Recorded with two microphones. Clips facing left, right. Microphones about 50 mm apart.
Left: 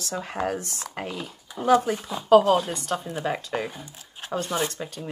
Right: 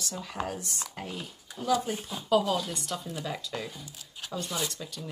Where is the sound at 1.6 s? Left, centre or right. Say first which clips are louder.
Left 8 dB; left.